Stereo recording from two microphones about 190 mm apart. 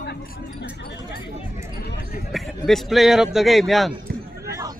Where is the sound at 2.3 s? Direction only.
Centre (ahead or behind).